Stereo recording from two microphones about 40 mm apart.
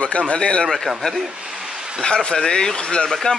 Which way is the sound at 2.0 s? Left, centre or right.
Centre.